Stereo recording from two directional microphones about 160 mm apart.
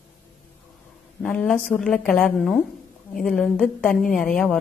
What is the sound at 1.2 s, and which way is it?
A woman's voice, 5° left (ahead or behind).